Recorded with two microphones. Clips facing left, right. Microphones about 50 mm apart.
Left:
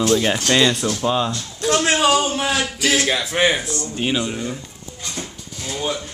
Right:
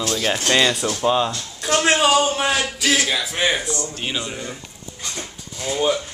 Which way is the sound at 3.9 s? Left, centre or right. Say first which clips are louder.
Left 5 dB; centre.